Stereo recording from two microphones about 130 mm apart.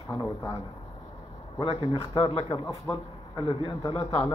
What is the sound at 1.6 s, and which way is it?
A man's voice, 45° left (ahead or behind).